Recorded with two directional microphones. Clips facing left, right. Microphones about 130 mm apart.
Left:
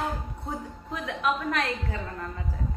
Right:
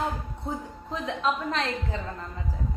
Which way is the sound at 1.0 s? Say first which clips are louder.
Even; 30° right (ahead or behind).